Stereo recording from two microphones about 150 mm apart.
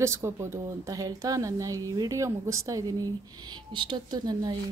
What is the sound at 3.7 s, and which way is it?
Speech, 30° right (ahead or behind).